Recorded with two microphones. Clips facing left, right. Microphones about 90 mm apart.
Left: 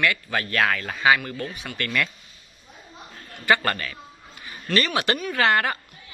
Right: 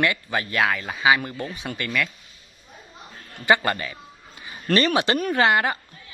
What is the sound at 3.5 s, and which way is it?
Speech, 15° right (ahead or behind).